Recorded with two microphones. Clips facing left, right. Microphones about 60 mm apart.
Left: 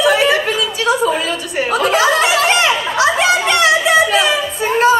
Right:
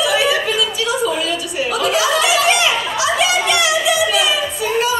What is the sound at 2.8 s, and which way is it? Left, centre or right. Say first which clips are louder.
Chatter: left 3 dB; left.